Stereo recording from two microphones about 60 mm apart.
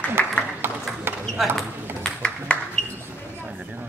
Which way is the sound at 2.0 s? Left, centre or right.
Centre.